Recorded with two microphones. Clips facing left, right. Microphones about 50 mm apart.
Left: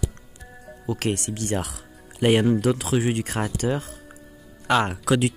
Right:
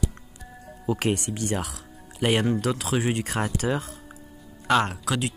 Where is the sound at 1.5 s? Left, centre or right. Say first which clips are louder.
Left 2 dB; centre.